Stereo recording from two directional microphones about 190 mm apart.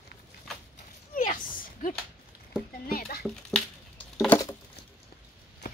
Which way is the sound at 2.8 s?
50° left (ahead or behind).